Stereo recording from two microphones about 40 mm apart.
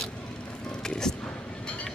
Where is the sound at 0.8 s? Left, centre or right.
Centre.